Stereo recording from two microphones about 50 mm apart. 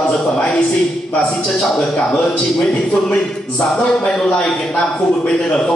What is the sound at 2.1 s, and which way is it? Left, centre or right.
A man's voice, left.